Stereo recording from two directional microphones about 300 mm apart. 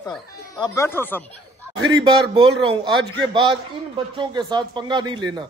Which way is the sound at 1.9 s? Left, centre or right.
Centre.